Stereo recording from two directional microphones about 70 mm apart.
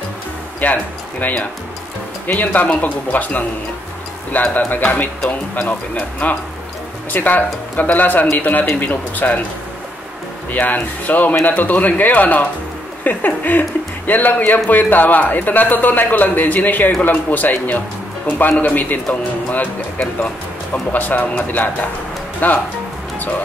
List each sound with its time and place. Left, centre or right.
0.6 s speech: left
10.5 s speech: left
20.9 s speech: left